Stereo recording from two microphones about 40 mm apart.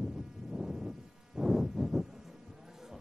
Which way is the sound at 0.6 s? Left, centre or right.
Centre.